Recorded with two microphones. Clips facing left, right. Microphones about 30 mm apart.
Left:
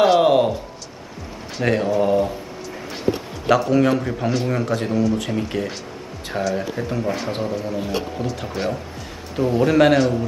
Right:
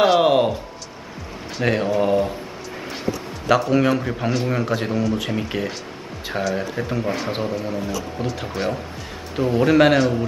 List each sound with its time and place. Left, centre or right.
0.0 s a sound: centre
1.6 s a man's voice: centre
3.5 s a man's voice: centre